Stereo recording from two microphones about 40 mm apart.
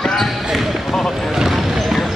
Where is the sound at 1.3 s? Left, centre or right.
Centre.